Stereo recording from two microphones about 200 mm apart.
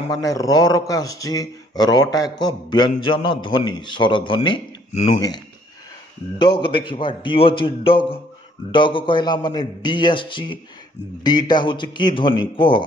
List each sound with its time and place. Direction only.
0.1 s a man's voice: 15° left (ahead or behind)